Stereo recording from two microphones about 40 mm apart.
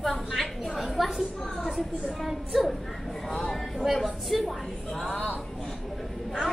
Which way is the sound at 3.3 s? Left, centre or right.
Centre.